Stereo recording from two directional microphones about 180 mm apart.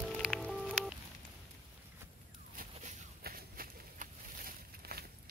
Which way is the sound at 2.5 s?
45° right (ahead or behind).